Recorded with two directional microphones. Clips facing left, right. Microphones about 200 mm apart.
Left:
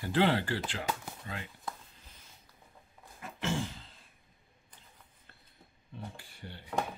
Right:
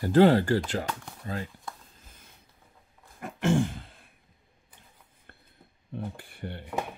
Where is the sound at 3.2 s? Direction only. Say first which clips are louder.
Right 9 dB; 55° right (ahead or behind).